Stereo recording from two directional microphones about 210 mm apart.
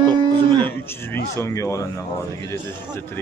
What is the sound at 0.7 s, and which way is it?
A man's voice, 10° left (ahead or behind).